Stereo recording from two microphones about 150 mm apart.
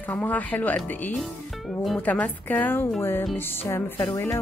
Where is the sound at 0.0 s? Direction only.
10° left (ahead or behind).